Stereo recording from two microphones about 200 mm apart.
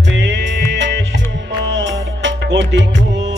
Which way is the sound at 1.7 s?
65° right (ahead or behind).